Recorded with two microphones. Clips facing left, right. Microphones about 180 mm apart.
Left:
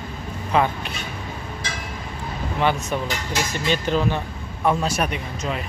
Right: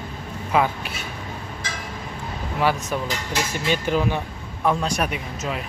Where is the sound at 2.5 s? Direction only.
5° right (ahead or behind).